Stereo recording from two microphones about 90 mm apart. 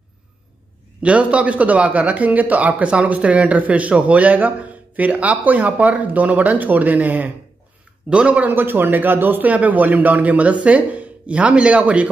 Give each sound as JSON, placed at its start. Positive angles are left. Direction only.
{"t": 1.0, "sound": "speech", "side_deg": -15}